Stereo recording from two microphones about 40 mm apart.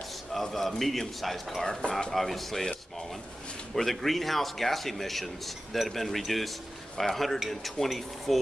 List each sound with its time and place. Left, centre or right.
0.3 s speech: centre
1.8 s speech: centre
2.1 s speech: centre